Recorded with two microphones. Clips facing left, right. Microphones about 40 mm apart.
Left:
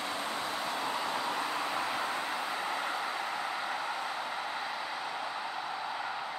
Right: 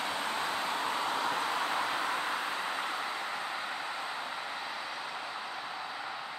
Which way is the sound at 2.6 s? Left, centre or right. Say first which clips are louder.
Left 1 dB; centre.